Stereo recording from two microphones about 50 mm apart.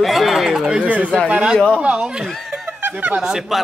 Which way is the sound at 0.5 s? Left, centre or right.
Centre.